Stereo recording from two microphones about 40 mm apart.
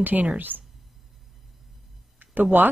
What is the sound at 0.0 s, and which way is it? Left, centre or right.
Speech, right.